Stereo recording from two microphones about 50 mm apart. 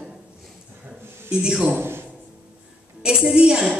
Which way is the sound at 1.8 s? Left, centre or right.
Right.